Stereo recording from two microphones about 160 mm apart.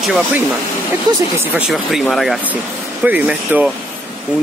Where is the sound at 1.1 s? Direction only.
25° right (ahead or behind).